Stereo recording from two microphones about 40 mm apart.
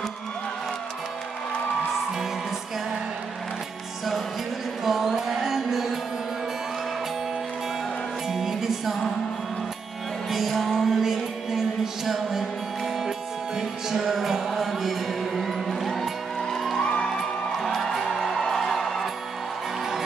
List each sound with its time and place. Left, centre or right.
4.8 s music: centre
8.3 s music: centre
10.3 s music: centre
16.8 s music: left
17.6 s music: centre